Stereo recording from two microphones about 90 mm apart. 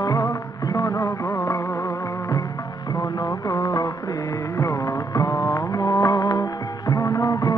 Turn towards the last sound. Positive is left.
turn(degrees=35)  # may be behind; listen again after turning